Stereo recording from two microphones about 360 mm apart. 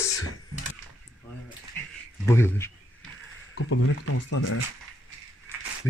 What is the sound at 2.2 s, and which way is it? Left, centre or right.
Speech, centre.